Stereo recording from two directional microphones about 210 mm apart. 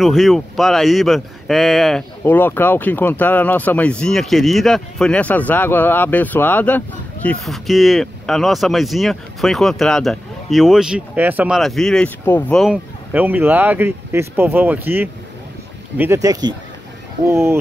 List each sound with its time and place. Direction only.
0.0 s speech: centre (ahead or behind)